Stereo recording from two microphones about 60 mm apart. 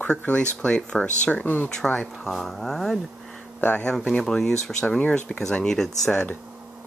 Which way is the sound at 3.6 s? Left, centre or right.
Left.